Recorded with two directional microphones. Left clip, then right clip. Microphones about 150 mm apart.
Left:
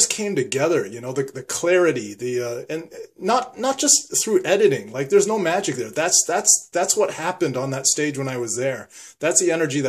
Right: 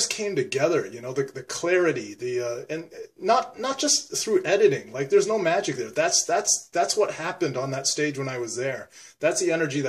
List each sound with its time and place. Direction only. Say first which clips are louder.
0.1 s speech: left 3 dB; 35° left (ahead or behind)